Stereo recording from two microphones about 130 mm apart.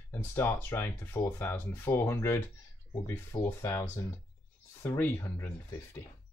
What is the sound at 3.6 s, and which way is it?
Speech, 20° left (ahead or behind).